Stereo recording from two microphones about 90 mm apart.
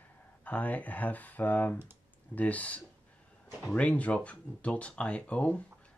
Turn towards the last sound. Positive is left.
turn(degrees=15)  # may be behind; listen again after turning